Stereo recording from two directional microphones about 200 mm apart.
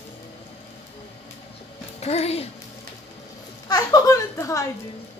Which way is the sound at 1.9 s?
30° left (ahead or behind).